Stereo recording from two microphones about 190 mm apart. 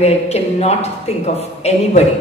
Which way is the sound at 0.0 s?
35° left (ahead or behind).